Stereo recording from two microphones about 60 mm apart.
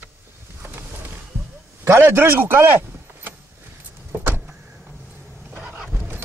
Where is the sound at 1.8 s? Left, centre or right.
Right.